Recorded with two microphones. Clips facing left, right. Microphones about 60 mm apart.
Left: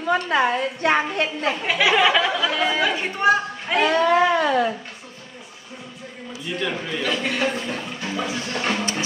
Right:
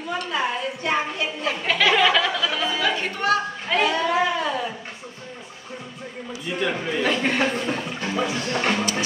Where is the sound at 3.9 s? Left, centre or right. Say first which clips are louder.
Left 4 dB; left.